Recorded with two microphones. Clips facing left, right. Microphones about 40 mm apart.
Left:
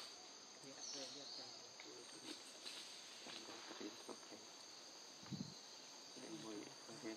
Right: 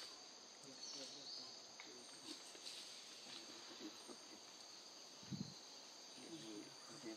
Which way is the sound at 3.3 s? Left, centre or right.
Centre.